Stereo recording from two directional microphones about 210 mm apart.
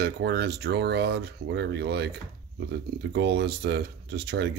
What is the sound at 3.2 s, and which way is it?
Speech, 50° right (ahead or behind).